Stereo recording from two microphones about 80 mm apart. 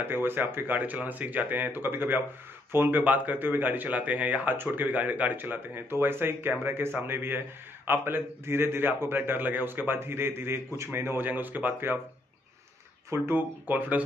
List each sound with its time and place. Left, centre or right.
0.0 s speech: right
13.1 s speech: right